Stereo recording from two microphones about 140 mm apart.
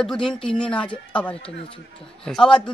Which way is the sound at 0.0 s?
5° left (ahead or behind).